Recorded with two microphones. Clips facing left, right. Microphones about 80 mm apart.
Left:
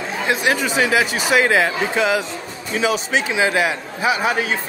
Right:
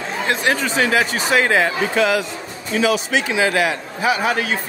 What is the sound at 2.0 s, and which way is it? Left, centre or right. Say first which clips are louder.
A man's voice: right 2 dB; left.